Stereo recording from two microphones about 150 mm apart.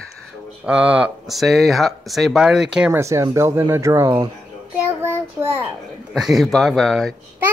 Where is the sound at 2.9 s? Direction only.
20° right (ahead or behind).